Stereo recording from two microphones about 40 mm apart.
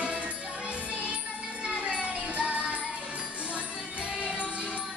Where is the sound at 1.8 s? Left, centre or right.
Right.